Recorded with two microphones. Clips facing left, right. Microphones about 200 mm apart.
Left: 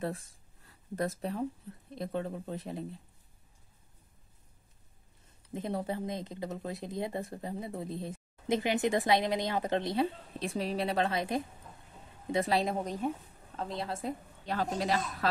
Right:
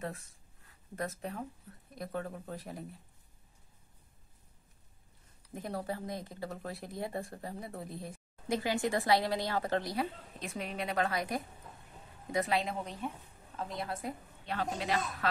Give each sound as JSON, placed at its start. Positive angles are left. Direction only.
{"t": 0.9, "sound": "a woman's voice", "side_deg": 35}
{"t": 5.5, "sound": "a woman's voice", "side_deg": 20}
{"t": 13.6, "sound": "speech", "side_deg": 30}
{"t": 14.4, "sound": "a woman's voice", "side_deg": 40}